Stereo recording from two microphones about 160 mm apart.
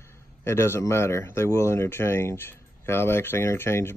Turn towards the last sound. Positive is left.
turn(degrees=15)  # may be behind; listen again after turning